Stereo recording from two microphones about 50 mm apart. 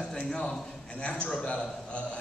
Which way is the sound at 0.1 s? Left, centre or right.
Centre.